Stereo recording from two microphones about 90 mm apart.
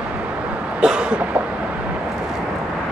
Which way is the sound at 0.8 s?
10° right (ahead or behind).